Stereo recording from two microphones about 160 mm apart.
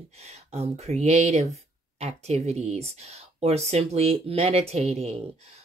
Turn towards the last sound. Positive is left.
turn(degrees=-40)  # may be behind; listen again after turning